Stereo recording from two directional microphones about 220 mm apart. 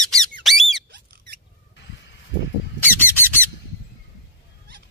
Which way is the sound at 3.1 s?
10° left (ahead or behind).